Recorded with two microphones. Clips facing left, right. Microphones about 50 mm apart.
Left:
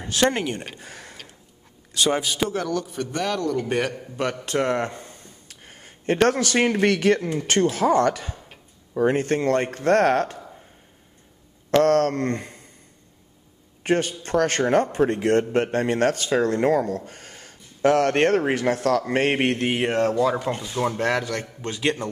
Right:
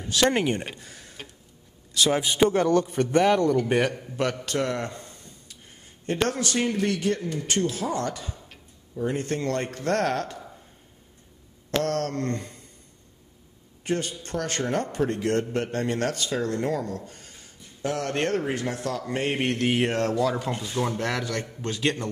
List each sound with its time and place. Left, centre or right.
0.3 s speech: centre
0.8 s tick-tock: left
2.3 s a man's voice: right
3.6 s a man's voice: centre
4.5 s speech: left
5.5 s a man's voice: left
11.7 s a man's voice: left
13.8 s a man's voice: left
14.9 s a man's voice: left
19.3 s a man's voice: left
19.6 s speech: centre
20.9 s a man's voice: left